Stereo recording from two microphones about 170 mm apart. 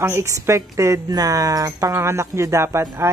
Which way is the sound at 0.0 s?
15° right (ahead or behind).